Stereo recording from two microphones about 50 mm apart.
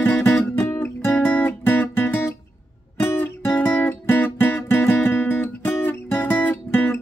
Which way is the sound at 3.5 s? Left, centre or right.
Left.